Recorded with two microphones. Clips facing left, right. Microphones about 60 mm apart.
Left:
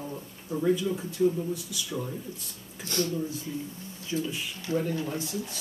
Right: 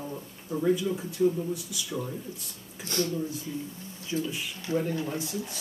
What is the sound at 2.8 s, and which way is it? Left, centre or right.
Speech, right.